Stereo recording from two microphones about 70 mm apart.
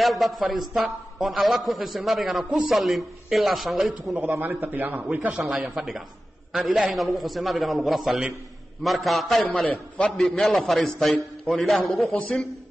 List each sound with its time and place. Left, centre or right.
0.0 s a man's voice: centre
4.2 s a man's voice: right
5.3 s a man's voice: centre